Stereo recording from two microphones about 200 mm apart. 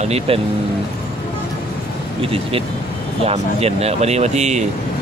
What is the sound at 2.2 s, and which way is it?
Speech, 30° right (ahead or behind).